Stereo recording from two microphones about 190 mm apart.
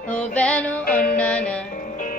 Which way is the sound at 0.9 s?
45° left (ahead or behind).